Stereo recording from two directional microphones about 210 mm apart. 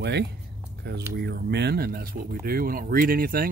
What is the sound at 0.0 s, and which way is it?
Speech, 55° right (ahead or behind).